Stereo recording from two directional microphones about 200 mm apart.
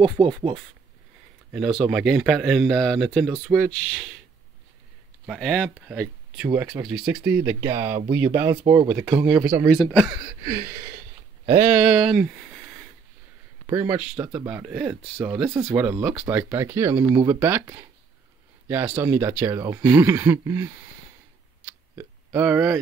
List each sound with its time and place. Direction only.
0.0 s speech: 25° right (ahead or behind)
1.5 s speech: centre (ahead or behind)
5.2 s speech: centre (ahead or behind)
9.8 s speech: 5° left (ahead or behind)
10.0 s speech: 15° right (ahead or behind)
10.6 s a sound: 50° right (ahead or behind)
11.7 s speech: centre (ahead or behind)
13.7 s speech: 10° right (ahead or behind)
21.9 s a sound: 10° right (ahead or behind)